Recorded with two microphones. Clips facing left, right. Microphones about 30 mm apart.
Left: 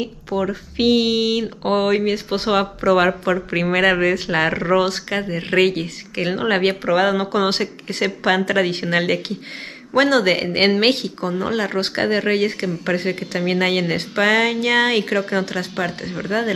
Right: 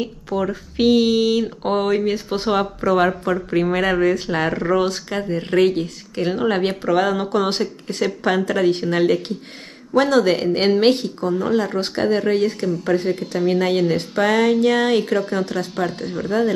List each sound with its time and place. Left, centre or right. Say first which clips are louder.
0.0 s speech: even; centre; by 5.2 s left
5.2 s speech: right 1 dB; left
5.6 s speech: even; left
7.4 s speech: left 1 dB; left
13.4 s speech: right 1 dB; left
16.1 s speech: right 1 dB; left